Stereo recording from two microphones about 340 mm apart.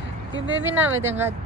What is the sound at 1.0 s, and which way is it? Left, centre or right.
Speech, centre.